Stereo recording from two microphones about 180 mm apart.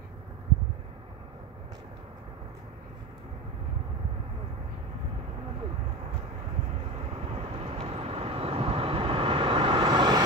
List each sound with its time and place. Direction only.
7.1 s vehicle: 30° right (ahead or behind)